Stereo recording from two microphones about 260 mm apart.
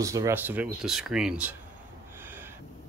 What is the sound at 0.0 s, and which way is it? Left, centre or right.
Speech, centre.